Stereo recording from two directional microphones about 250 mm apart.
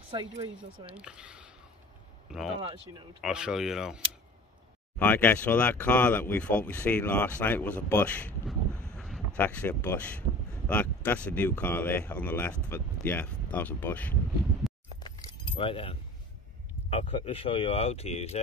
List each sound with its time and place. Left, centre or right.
0.1 s speech: centre
0.8 s speech: centre
8.9 s a sound: centre
9.4 s speech: centre
15.0 s keys jangling: centre
16.9 s speech: left